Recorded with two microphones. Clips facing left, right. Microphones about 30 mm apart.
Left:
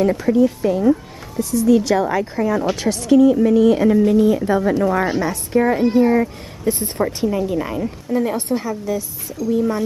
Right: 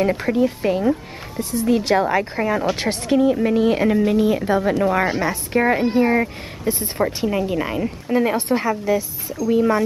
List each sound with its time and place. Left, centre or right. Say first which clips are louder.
0.0 s a woman's voice: left 3 dB; right; by 5.3 s centre
5.3 s speech: left 1 dB; right
5.8 s speech: left 2 dB; centre
6.6 s speech: left 1 dB; centre
7.2 s speech: left 1 dB; right